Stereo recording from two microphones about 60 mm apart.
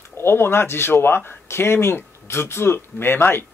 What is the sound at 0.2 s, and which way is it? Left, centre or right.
Speech, left.